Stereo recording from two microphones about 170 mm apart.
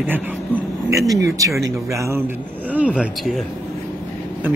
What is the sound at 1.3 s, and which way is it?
Speech, 20° right (ahead or behind).